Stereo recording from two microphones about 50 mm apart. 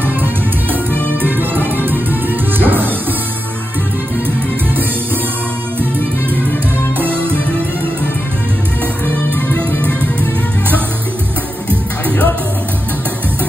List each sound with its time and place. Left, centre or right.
1.2 s music: right
7.0 s music: right
9.5 s music: left